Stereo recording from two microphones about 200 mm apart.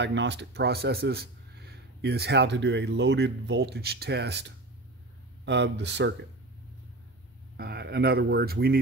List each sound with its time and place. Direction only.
0.0 s speech: 60° right (ahead or behind)
7.5 s speech: 55° right (ahead or behind)